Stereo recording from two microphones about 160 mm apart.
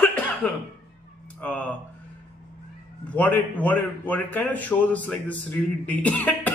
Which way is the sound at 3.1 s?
10° left (ahead or behind).